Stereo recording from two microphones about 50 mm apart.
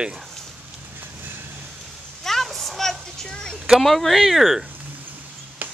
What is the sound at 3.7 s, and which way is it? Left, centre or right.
Speech, centre.